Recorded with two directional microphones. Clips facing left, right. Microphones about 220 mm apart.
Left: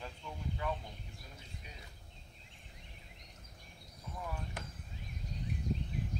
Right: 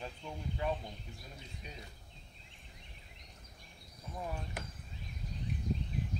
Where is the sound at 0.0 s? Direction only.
25° right (ahead or behind).